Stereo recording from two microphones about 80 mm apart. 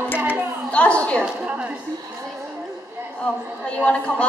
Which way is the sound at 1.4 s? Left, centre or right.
Centre.